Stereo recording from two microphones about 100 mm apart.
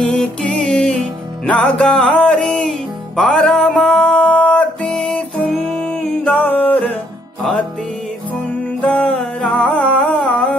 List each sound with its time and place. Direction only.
0.0 s music: 10° left (ahead or behind)
6.3 s music: 15° left (ahead or behind)
8.8 s music: 10° left (ahead or behind)